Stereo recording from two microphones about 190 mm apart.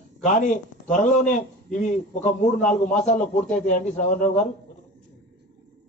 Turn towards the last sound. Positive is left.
turn(degrees=40)  # may be behind; listen again after turning